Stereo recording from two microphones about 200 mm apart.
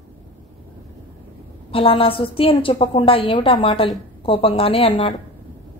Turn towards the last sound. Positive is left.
turn(degrees=25)  # may be behind; listen again after turning